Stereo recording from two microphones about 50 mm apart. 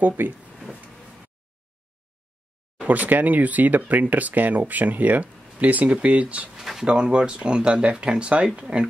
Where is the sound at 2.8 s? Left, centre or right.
Right.